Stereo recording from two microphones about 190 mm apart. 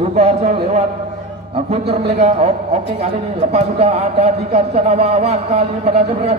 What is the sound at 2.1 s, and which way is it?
Speech, 35° right (ahead or behind).